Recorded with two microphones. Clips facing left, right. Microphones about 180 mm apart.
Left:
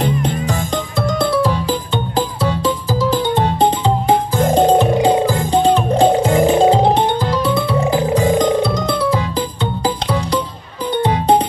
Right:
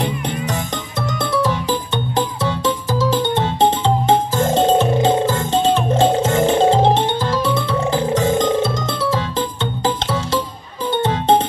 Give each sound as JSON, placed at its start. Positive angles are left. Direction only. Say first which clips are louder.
{"t": 4.5, "sound": "music", "louder": "left 3 dB", "side_deg": -25}